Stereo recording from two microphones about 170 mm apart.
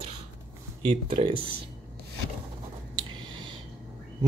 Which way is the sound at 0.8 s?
30° right (ahead or behind).